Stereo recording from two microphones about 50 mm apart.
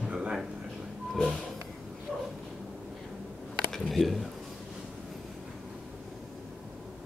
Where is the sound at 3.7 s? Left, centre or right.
Centre.